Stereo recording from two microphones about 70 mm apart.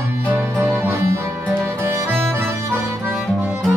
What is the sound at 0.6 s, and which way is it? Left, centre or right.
Music, right.